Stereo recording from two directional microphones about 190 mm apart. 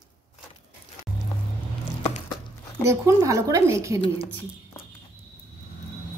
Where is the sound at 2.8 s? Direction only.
15° right (ahead or behind).